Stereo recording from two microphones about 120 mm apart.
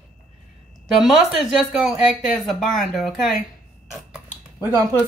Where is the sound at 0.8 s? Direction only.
Centre (ahead or behind).